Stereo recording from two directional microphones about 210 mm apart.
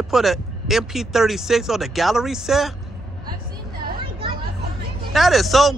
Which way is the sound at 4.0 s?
25° right (ahead or behind).